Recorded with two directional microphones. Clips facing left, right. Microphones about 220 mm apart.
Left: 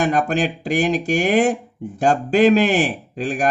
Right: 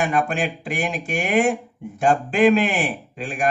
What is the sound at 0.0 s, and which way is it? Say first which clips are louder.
Speech: left 3 dB; 40° left (ahead or behind).